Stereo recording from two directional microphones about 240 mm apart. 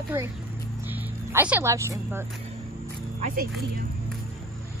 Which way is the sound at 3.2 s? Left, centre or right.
Right.